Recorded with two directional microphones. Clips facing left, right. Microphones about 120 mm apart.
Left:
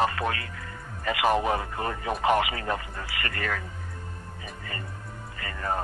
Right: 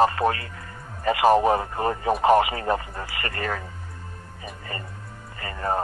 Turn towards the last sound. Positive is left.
turn(degrees=-30)  # may be behind; listen again after turning